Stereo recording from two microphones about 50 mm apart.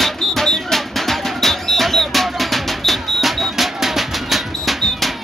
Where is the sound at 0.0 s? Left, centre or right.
Centre.